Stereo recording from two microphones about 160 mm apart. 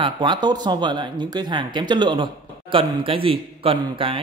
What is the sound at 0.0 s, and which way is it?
Speech, 30° right (ahead or behind).